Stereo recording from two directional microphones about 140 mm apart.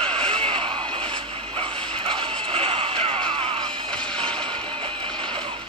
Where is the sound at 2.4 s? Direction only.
40° right (ahead or behind).